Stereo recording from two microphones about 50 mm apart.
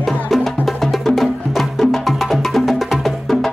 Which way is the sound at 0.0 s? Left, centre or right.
Centre.